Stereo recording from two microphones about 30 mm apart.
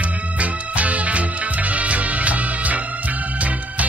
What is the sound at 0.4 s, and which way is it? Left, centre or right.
Music, right.